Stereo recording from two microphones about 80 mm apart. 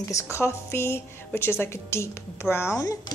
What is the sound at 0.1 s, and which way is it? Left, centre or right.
Speech, left.